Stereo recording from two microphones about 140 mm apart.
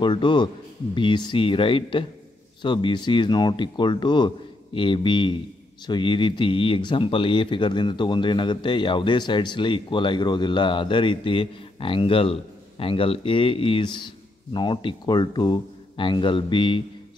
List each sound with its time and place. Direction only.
0.0 s speech: 35° left (ahead or behind)